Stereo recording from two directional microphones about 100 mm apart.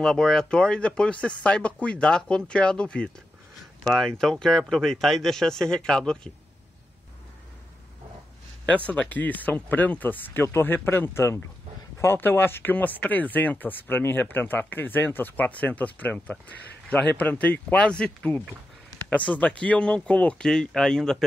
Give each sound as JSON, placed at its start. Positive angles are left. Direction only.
{"t": 0.0, "sound": "speech", "side_deg": 5}
{"t": 8.6, "sound": "speech", "side_deg": 15}